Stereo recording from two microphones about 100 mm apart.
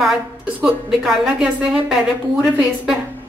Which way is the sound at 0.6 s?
10° right (ahead or behind).